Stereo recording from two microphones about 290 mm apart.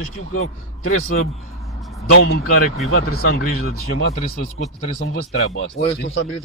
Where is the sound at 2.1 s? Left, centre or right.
Left.